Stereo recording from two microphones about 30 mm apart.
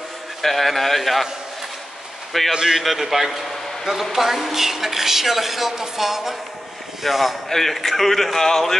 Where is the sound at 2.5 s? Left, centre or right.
Right.